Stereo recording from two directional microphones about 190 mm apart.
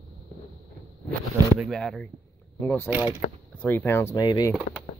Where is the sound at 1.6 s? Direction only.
Centre (ahead or behind).